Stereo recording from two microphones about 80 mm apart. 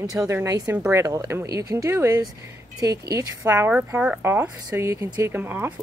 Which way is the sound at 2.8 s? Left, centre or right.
Right.